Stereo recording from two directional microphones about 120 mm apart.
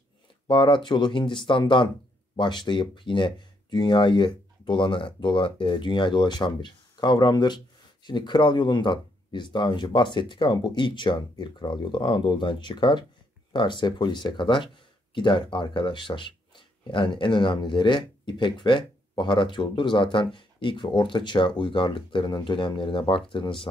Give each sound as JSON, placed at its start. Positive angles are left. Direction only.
{"t": 0.5, "sound": "speech", "side_deg": 40}